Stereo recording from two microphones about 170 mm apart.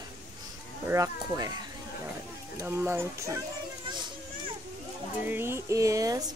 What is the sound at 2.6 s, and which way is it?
Speech, 15° right (ahead or behind).